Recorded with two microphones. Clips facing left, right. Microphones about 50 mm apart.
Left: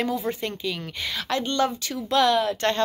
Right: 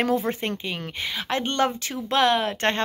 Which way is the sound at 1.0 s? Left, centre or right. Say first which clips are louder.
Even; right.